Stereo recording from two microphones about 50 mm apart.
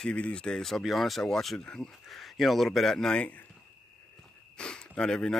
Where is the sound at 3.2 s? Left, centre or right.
Left.